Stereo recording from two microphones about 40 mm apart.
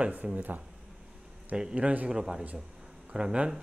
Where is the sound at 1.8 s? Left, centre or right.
Right.